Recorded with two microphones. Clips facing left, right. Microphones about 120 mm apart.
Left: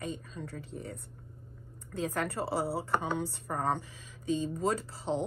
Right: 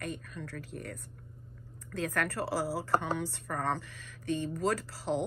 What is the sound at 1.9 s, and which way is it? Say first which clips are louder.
Speech: even; 25° left (ahead or behind).